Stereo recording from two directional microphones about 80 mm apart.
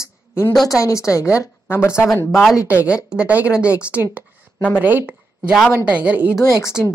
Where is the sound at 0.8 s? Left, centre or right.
Left.